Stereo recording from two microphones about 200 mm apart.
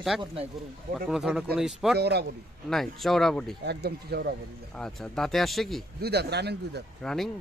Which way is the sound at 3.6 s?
55° right (ahead or behind).